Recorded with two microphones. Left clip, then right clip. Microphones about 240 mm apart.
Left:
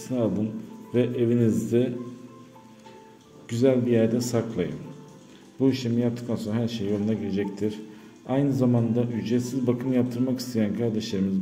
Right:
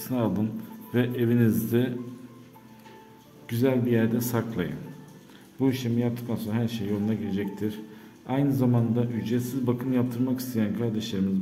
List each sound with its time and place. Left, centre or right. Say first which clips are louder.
0.0 s a man's voice: left 2 dB; centre
3.4 s a man's voice: left 3 dB; centre